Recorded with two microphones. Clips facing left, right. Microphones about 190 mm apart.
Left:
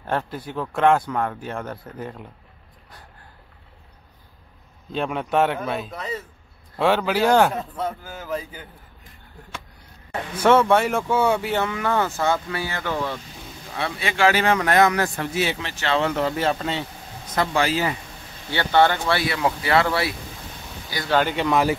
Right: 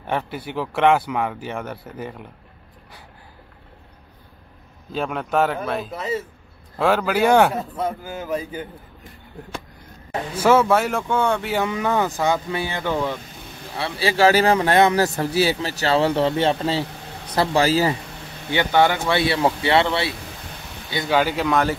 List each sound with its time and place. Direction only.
0.6 s speech: 5° right (ahead or behind)
4.9 s a man's voice: centre (ahead or behind); by 8.6 s 15° right (ahead or behind)
10.3 s speech: 5° right (ahead or behind)
11.5 s a man's voice: 15° right (ahead or behind)
13.7 s speech: 30° right (ahead or behind)
18.5 s a man's voice: 15° right (ahead or behind)
19.1 s speech: 25° right (ahead or behind)
21.1 s speech: 5° right (ahead or behind)